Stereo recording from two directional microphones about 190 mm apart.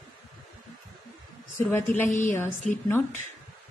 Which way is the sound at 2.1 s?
40° left (ahead or behind).